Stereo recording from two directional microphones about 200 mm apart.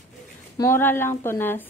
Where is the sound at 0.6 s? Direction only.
10° left (ahead or behind).